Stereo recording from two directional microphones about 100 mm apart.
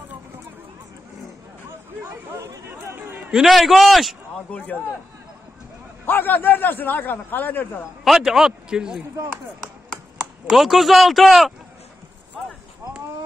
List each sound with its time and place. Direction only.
1.7 s a sound: 25° right (ahead or behind)
2.7 s chatter: 20° right (ahead or behind)
3.3 s a man's voice: 5° right (ahead or behind)
4.5 s a man's voice: 15° left (ahead or behind)
6.0 s a man's voice: 20° left (ahead or behind)
8.0 s a man's voice: 5° right (ahead or behind)
10.5 s a man's voice: centre (ahead or behind)